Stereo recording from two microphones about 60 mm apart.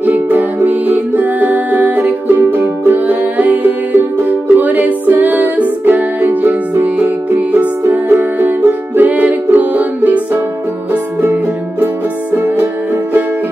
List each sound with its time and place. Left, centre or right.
0.0 s music: right